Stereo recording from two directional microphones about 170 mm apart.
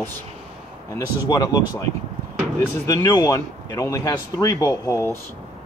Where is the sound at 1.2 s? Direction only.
20° left (ahead or behind).